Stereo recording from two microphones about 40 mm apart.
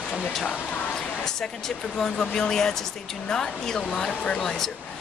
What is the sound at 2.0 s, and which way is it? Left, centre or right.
Speech, centre.